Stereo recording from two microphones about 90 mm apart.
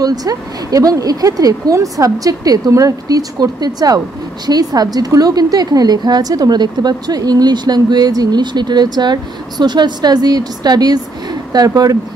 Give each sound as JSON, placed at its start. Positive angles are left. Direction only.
{"t": 0.0, "sound": "a woman's voice", "side_deg": -45}